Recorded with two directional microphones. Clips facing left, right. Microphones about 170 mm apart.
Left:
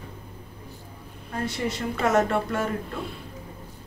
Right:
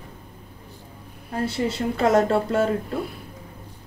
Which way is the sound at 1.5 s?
30° right (ahead or behind).